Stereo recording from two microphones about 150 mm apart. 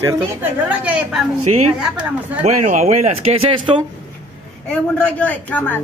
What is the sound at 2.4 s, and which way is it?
Speech, 50° right (ahead or behind).